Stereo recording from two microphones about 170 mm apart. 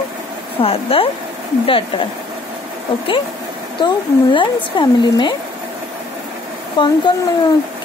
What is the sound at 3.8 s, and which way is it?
Speech, 30° left (ahead or behind).